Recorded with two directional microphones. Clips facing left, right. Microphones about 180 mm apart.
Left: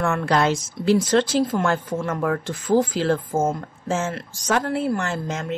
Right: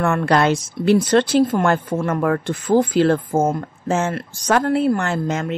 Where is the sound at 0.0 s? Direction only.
60° right (ahead or behind).